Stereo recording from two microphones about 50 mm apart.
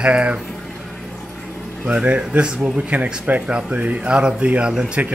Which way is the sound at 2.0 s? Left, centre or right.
Right.